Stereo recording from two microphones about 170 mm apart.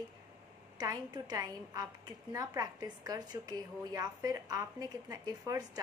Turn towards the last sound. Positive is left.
turn(degrees=-20)  # may be behind; listen again after turning